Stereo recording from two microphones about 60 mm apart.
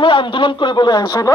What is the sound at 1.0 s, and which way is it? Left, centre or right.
Speech, left.